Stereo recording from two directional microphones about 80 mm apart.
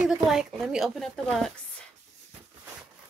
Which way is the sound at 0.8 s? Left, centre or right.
Centre.